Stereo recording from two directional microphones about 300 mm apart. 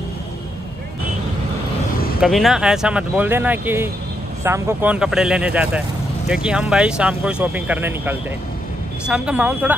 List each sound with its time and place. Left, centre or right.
2.0 s vehicle: left
2.2 s speech: centre